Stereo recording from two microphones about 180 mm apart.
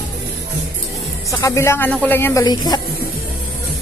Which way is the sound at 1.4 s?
15° left (ahead or behind).